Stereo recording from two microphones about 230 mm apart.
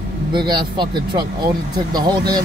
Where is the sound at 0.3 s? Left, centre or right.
Centre.